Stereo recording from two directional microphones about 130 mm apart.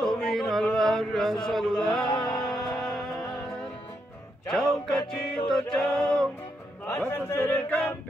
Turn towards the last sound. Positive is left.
turn(degrees=10)  # may be behind; listen again after turning